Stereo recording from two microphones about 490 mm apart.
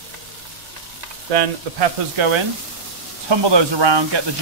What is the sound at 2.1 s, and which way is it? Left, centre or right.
Speech, right.